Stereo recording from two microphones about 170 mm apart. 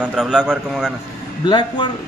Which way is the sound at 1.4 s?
25° left (ahead or behind).